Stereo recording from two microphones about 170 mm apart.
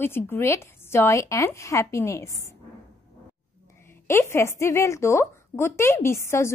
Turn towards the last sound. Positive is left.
turn(degrees=15)  # may be behind; listen again after turning